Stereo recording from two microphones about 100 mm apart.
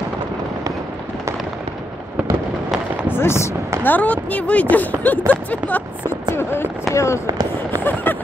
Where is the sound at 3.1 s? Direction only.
25° left (ahead or behind).